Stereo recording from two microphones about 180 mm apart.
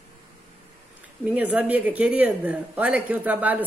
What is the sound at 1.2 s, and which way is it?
Speech, 10° right (ahead or behind).